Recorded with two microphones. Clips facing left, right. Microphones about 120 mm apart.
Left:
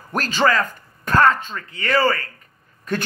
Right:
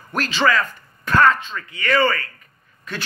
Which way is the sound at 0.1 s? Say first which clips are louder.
Left 1 dB; 40° left (ahead or behind).